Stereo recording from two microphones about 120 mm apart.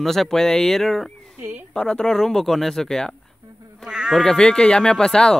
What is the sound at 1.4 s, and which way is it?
Speech, 20° right (ahead or behind).